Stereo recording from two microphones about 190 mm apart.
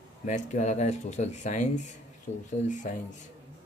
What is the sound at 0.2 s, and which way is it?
Speech, 40° left (ahead or behind).